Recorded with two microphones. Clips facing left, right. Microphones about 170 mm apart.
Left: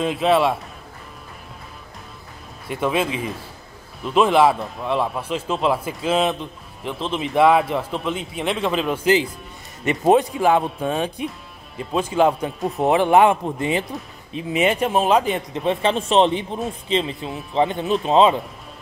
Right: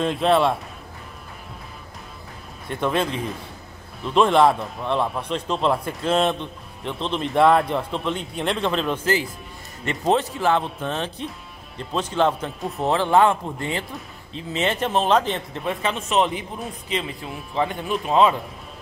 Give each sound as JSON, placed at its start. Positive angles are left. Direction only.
{"t": 0.0, "sound": "a man's voice", "side_deg": 5}
{"t": 2.7, "sound": "a man's voice", "side_deg": 5}
{"t": 12.7, "sound": "speech", "side_deg": 15}
{"t": 15.6, "sound": "speech", "side_deg": 25}